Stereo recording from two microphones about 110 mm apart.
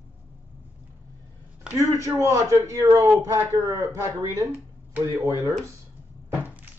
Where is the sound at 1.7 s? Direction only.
30° right (ahead or behind).